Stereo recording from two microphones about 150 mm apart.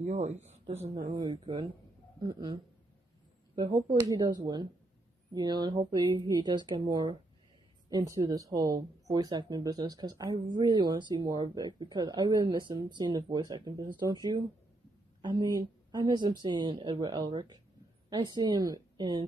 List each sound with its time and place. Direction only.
0.0 s speech: 45° right (ahead or behind)
1.1 s speech: 30° right (ahead or behind)